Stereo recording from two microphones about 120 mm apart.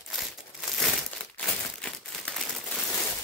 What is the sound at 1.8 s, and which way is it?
Crumpling, 5° left (ahead or behind).